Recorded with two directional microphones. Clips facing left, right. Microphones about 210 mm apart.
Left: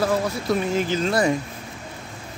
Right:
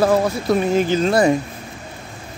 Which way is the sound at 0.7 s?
20° right (ahead or behind).